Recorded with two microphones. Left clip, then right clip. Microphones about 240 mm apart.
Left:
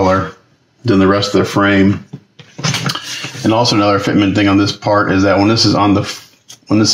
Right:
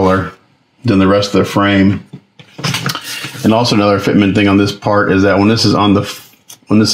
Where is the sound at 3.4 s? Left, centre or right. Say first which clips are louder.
Right 1 dB; right.